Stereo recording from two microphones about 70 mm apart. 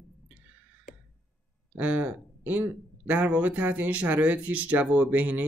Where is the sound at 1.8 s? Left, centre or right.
Right.